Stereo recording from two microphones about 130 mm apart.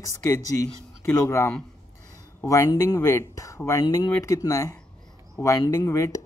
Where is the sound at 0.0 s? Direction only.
25° left (ahead or behind).